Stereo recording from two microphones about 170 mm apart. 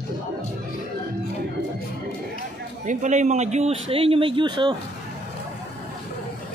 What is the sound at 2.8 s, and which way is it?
A man's voice, 45° right (ahead or behind).